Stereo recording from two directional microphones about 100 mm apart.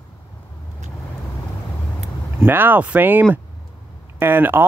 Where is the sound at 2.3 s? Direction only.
20° right (ahead or behind).